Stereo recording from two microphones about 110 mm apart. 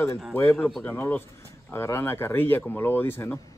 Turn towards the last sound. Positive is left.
turn(degrees=20)  # may be behind; listen again after turning